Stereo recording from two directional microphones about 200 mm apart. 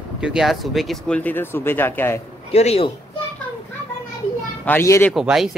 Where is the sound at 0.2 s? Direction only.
5° right (ahead or behind).